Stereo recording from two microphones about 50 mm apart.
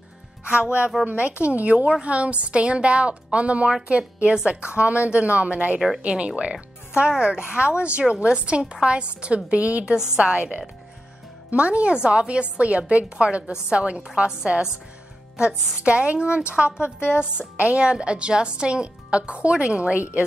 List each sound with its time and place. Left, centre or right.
0.6 s a woman's voice: right
4.7 s a woman's voice: right